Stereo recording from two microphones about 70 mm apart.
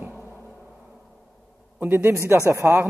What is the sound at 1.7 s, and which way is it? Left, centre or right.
A man's voice, right.